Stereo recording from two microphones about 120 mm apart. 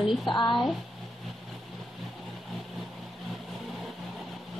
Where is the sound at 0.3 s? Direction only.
40° left (ahead or behind).